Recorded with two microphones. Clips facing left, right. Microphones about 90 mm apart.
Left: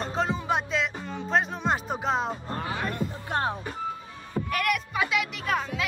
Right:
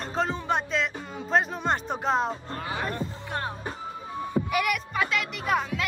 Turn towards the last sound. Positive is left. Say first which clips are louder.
# right 1 dB
turn(degrees=0)  # may be behind; listen again after turning